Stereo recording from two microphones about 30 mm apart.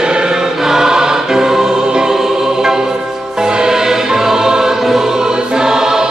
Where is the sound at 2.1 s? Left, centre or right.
Centre.